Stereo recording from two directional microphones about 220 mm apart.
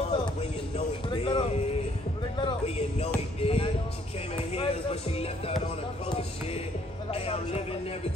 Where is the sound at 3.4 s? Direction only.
25° left (ahead or behind).